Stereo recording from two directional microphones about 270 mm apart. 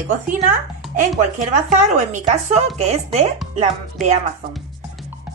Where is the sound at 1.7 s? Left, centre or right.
Right.